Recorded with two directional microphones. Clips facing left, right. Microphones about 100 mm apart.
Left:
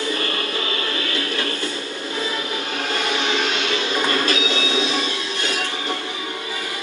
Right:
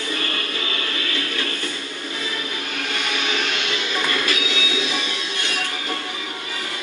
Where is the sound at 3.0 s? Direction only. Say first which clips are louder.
Left 3 dB; 30° left (ahead or behind).